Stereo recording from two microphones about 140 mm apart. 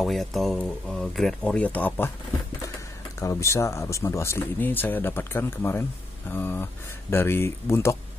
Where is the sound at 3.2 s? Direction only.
20° left (ahead or behind).